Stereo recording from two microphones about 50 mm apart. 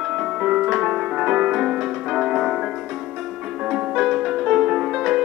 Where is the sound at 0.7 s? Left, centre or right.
Centre.